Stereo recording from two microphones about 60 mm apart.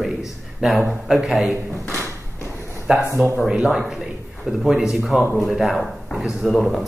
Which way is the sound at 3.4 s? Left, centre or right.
Centre.